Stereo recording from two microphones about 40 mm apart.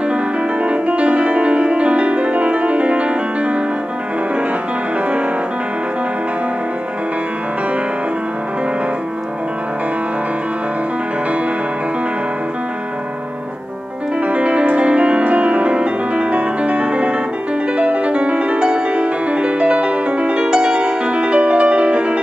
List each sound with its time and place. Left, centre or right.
0.7 s music: right
14.2 s music: right